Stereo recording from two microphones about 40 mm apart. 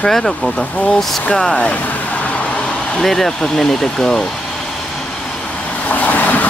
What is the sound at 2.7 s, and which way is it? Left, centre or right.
Vehicle, centre.